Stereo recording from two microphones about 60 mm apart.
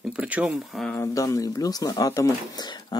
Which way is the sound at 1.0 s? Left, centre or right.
Left.